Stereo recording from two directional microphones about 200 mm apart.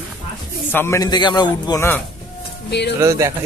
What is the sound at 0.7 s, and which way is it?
A man's voice, 10° left (ahead or behind).